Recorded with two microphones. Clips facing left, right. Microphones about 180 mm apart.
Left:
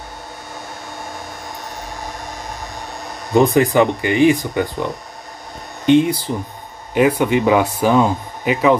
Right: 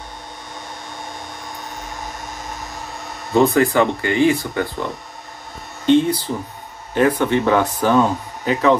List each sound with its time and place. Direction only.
3.3 s speech: 15° left (ahead or behind)
5.9 s speech: 10° left (ahead or behind)